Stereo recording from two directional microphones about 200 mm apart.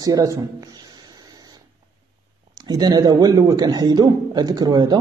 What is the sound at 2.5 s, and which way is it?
A man's voice, 20° right (ahead or behind).